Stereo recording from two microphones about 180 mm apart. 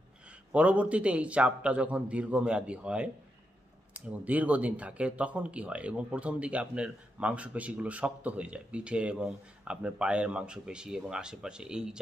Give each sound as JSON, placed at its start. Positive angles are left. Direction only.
{"t": 0.5, "sound": "speech", "side_deg": -10}